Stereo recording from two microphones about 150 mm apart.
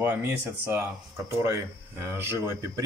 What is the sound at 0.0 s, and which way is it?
Speech, 15° right (ahead or behind).